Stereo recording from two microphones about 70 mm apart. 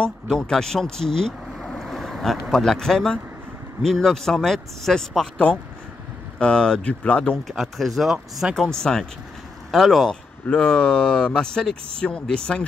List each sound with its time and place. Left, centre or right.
0.0 s speech: centre
7.4 s speech: centre
8.5 s speech: centre
10.4 s speech: centre